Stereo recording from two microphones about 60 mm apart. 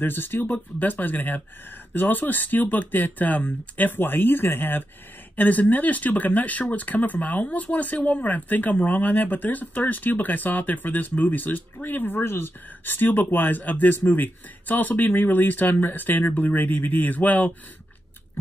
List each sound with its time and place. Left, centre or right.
0.0 s speech: left